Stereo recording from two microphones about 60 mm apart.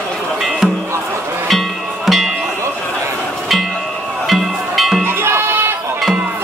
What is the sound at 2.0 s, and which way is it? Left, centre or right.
Music, centre.